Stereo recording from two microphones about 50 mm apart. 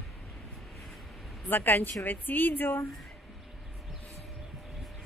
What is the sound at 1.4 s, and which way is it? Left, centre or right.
A woman's voice, left.